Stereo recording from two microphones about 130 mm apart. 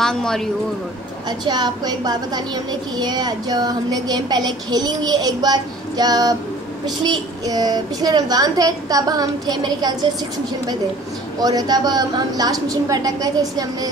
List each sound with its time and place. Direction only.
0.0 s speech: 5° left (ahead or behind)
1.4 s a woman's voice: 30° right (ahead or behind)
11.3 s a child's voice: 30° right (ahead or behind)